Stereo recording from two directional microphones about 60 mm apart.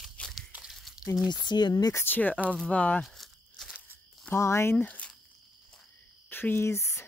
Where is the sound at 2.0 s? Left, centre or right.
Left.